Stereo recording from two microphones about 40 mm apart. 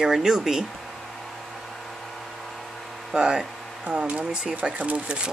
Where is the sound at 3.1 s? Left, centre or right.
Right.